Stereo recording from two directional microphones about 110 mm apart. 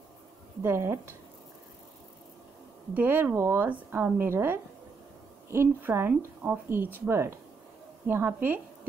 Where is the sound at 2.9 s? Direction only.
15° right (ahead or behind).